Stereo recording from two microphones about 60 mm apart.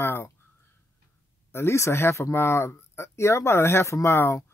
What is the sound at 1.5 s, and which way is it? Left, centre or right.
Speech, left.